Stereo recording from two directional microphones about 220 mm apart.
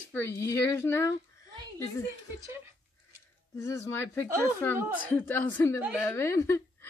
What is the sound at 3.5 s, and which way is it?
Speech, 15° left (ahead or behind).